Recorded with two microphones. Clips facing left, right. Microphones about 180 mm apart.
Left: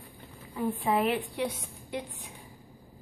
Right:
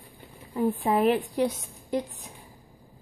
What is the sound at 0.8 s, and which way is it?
Speech, 40° right (ahead or behind).